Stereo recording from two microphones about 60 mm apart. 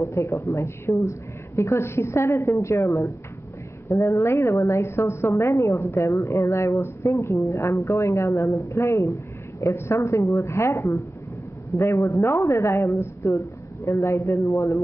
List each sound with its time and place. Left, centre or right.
0.0 s a woman's voice: left
6.1 s speech: left